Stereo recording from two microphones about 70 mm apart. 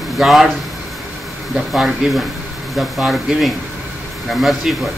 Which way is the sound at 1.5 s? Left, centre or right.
Centre.